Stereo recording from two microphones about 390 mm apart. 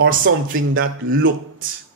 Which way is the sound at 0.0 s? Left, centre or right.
Right.